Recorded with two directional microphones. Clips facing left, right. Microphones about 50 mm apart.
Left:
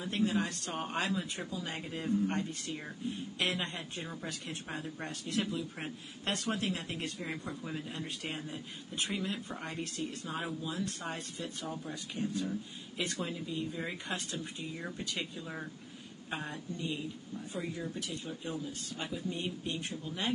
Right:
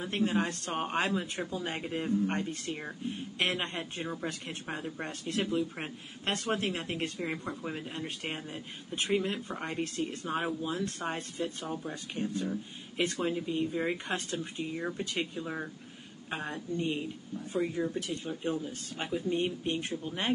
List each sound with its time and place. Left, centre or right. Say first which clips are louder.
0.0 s a woman's voice: right 2 dB; right
16.7 s speech: right 6 dB; right
17.6 s speech: right 8 dB; centre
17.9 s speech: right 5 dB; right